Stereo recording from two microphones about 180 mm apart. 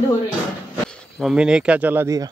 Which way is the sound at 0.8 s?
Centre (ahead or behind).